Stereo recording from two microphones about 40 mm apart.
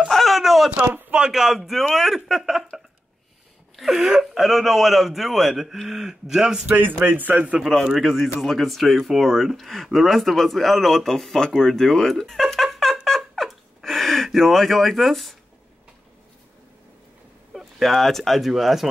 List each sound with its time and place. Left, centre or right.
0.1 s a sound: centre
1.3 s speech: centre
3.9 s speech: centre
7.1 s a man's voice: right
7.6 s speech: centre
13.0 s a sound: centre
13.8 s speech: centre
17.6 s speech: centre